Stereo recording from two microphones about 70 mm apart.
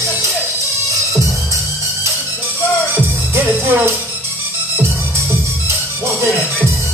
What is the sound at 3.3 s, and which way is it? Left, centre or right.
Music, right.